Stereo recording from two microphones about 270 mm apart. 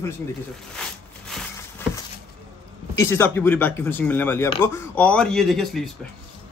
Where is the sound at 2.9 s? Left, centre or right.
Centre.